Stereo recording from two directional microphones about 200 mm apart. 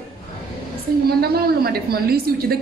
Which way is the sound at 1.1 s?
50° right (ahead or behind).